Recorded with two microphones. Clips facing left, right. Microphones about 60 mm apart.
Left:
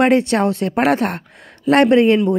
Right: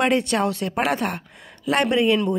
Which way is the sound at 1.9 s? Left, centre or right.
Left.